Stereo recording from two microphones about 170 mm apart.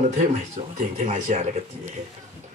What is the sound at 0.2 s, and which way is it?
Speech, 45° right (ahead or behind).